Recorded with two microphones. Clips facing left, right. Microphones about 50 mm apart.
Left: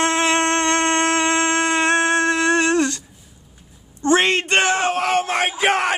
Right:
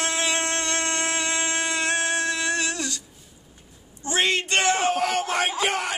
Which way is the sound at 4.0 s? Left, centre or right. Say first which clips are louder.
Left 7 dB; left.